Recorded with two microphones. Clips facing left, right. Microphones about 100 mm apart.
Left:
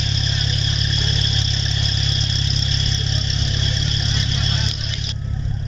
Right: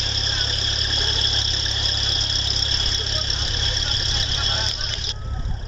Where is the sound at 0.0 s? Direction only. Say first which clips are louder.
Left 4 dB; 35° right (ahead or behind).